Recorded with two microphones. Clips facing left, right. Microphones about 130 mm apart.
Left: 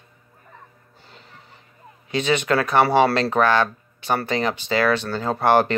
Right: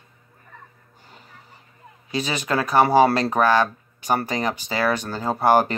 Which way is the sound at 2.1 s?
35° right (ahead or behind).